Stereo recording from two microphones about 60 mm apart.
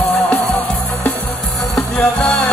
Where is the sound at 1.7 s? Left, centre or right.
Left.